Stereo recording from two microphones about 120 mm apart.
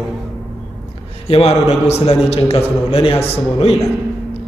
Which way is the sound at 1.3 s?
60° left (ahead or behind).